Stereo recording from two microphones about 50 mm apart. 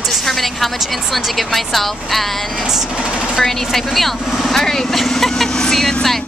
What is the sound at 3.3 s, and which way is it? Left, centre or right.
A woman's voice, centre.